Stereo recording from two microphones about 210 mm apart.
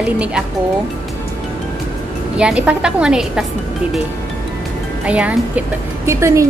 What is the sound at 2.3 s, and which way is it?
A woman's voice, 5° right (ahead or behind).